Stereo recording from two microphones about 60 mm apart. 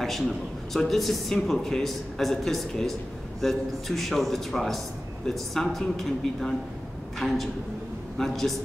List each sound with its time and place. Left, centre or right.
0.7 s a man's voice: centre